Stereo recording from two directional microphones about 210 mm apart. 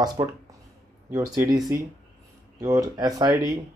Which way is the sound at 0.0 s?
20° right (ahead or behind).